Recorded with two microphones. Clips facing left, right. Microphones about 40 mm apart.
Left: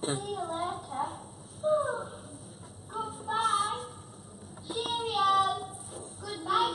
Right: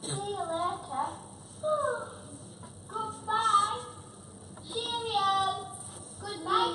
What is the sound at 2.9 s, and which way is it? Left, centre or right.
Female singing, centre.